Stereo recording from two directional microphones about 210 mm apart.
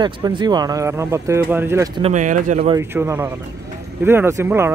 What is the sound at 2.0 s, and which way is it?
Speech, 35° right (ahead or behind).